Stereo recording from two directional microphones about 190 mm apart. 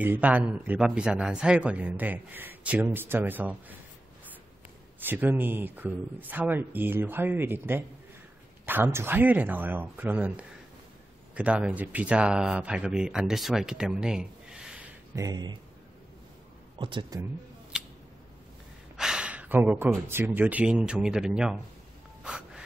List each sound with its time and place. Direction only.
0.0 s speech: 10° right (ahead or behind)
5.0 s speech: 10° right (ahead or behind)
15.1 s speech: 20° right (ahead or behind)
16.7 s speech: 25° right (ahead or behind)
17.7 s a sound: 5° right (ahead or behind)
18.9 s speech: 5° right (ahead or behind)
22.2 s snort: 5° right (ahead or behind)